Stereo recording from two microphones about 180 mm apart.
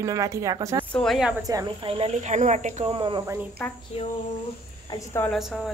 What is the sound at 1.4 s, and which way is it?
Speech, 25° right (ahead or behind).